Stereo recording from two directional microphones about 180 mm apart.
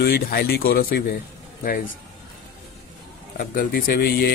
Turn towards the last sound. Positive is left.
turn(degrees=60)  # may be behind; listen again after turning